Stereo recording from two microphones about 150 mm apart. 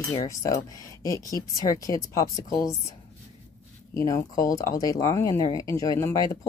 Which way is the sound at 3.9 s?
20° left (ahead or behind).